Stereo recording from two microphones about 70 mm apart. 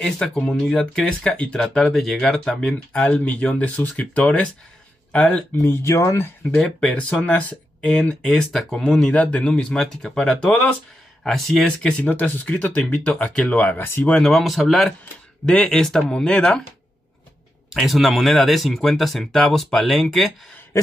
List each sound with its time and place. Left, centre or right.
0.0 s speech: centre
3.1 s speech: centre
5.6 s speech: left
6.5 s speech: centre
8.1 s speech: centre
10.5 s speech: left
11.2 s speech: centre
11.8 s speech: left
14.2 s speech: centre
17.7 s speech: centre